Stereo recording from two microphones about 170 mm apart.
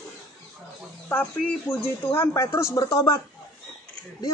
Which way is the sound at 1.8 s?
10° left (ahead or behind).